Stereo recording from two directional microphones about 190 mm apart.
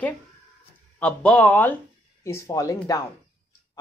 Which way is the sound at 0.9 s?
5° left (ahead or behind).